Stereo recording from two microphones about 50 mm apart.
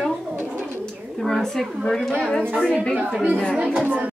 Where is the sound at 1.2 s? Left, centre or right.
Centre.